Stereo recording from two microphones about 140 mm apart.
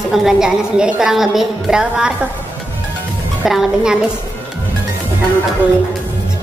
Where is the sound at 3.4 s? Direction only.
5° right (ahead or behind).